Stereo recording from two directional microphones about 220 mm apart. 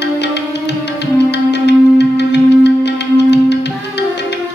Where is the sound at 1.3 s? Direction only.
50° left (ahead or behind).